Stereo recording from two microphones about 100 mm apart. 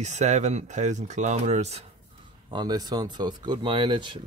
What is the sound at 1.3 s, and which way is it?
Speech, 90° right.